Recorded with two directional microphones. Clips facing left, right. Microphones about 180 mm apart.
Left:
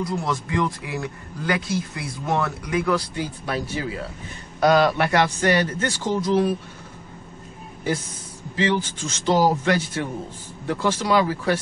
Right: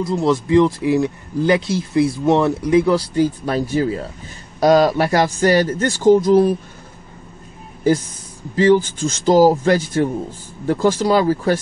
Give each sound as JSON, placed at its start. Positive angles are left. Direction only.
{"t": 0.2, "sound": "speech", "side_deg": -25}
{"t": 3.2, "sound": "a man's voice", "side_deg": -40}
{"t": 8.5, "sound": "a man's voice", "side_deg": -40}